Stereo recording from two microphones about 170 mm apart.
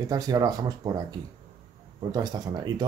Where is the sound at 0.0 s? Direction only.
20° right (ahead or behind).